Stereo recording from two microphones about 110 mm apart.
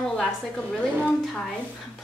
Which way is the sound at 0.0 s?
5° left (ahead or behind).